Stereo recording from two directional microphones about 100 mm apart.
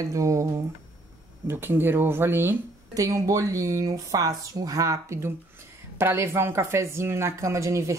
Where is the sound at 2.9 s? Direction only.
35° right (ahead or behind).